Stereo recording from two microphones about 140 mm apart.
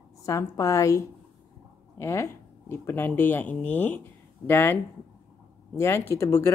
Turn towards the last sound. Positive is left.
turn(degrees=20)  # may be behind; listen again after turning